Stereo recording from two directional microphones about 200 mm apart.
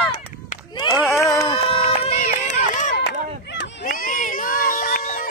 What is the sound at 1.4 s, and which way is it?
Run, 25° left (ahead or behind).